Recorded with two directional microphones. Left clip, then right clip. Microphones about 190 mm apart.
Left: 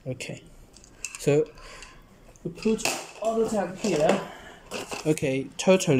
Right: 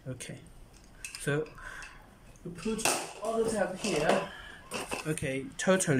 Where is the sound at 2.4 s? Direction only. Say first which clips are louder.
Left 8 dB; 25° left (ahead or behind).